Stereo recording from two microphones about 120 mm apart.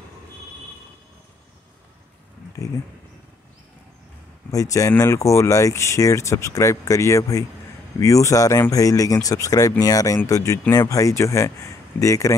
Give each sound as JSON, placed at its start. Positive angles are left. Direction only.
{"t": 4.5, "sound": "speech", "side_deg": 30}